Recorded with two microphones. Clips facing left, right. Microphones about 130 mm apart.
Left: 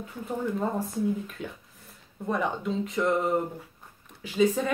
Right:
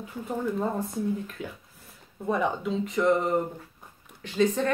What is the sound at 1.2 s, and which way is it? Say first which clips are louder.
Speech: right 1 dB; centre (ahead or behind).